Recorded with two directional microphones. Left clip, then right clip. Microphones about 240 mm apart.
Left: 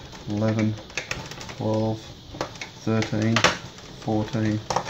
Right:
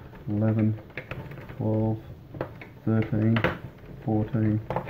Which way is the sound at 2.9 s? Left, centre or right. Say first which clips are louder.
Left 3 dB; centre.